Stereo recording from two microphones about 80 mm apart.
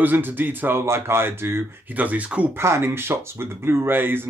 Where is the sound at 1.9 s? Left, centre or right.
Centre.